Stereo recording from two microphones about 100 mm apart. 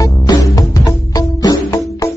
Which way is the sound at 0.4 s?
35° left (ahead or behind).